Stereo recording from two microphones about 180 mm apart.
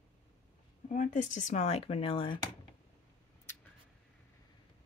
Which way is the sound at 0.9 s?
45° left (ahead or behind).